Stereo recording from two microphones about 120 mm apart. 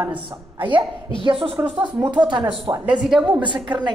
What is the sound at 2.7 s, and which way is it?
Speech, 35° right (ahead or behind).